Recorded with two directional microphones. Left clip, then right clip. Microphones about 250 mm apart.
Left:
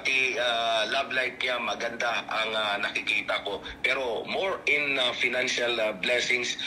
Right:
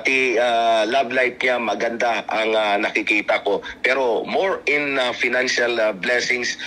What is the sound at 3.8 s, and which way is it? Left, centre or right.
Speech, centre.